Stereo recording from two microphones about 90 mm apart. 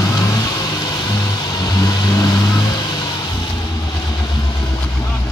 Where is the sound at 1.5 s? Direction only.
45° left (ahead or behind).